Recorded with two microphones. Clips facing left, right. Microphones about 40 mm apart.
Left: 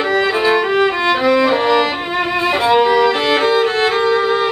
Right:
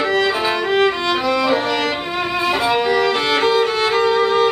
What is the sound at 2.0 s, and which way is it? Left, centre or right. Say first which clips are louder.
Violin: left 3 dB; left.